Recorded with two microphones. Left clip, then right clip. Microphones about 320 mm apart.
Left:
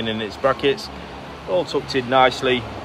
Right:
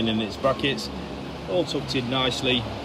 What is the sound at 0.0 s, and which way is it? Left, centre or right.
Speech, centre.